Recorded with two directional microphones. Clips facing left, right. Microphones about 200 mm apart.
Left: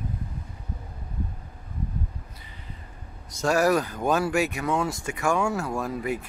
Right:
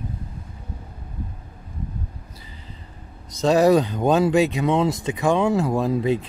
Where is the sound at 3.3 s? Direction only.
20° right (ahead or behind).